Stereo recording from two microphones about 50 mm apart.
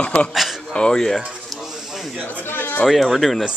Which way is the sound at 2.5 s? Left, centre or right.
Left.